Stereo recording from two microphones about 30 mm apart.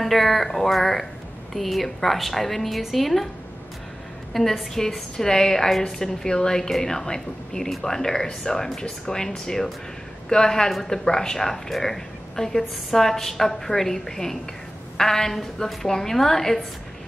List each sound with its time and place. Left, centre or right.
0.0 s a woman's voice: centre
4.3 s a woman's voice: centre